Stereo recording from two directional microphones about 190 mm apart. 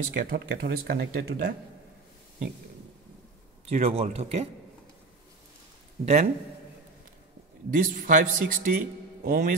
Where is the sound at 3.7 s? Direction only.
35° right (ahead or behind).